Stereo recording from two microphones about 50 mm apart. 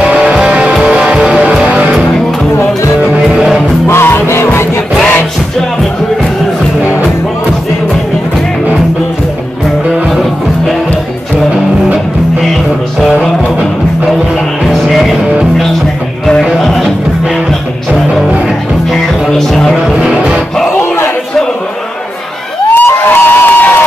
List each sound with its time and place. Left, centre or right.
0.0 s music: centre
3.2 s music: centre
3.9 s music: left
14.7 s music: centre
16.3 s music: centre
20.7 s a sound: left
22.8 s a sound: left